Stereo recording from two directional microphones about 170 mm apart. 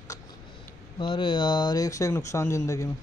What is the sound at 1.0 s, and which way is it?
Speech, 30° left (ahead or behind).